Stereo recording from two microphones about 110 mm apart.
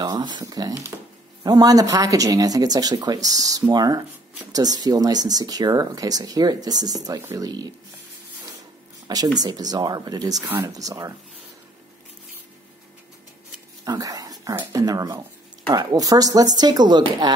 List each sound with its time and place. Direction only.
0.0 s speech: 40° right (ahead or behind)
7.2 s speech: 25° right (ahead or behind)
7.4 s speech: 35° right (ahead or behind)
9.0 s speech: 40° right (ahead or behind)
13.8 s dog: 35° right (ahead or behind)
14.7 s speech: 30° right (ahead or behind)